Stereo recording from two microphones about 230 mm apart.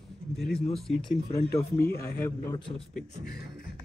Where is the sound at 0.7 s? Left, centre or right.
Centre.